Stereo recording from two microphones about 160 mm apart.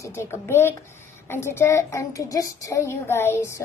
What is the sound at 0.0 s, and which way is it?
A child's voice, 15° left (ahead or behind).